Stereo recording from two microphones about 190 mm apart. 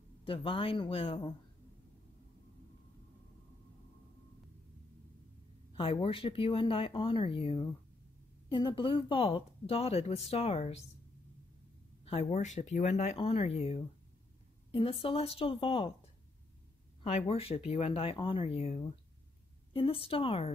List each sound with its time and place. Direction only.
0.2 s speech: 30° left (ahead or behind)
5.8 s speech: 30° left (ahead or behind)
12.0 s speech: 35° left (ahead or behind)
17.3 s speech: 30° left (ahead or behind)